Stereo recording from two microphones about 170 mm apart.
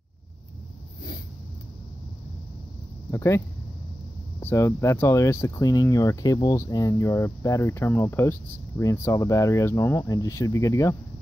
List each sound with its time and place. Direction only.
3.1 s speech: 15° left (ahead or behind)